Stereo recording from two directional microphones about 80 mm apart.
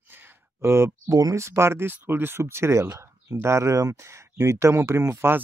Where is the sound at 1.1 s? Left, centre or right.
Right.